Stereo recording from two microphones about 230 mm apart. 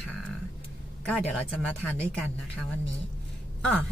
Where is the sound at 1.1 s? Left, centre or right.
Centre.